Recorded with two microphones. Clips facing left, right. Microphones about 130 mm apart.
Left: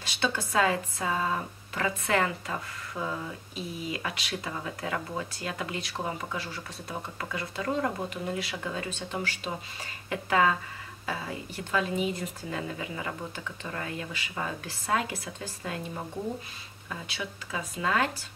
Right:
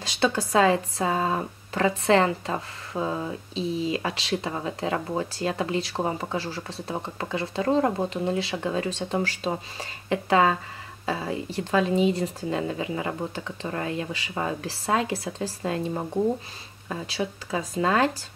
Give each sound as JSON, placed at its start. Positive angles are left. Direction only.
{"t": 0.2, "sound": "speech", "side_deg": -35}